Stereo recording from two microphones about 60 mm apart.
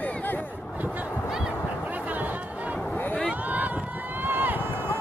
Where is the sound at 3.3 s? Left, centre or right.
Right.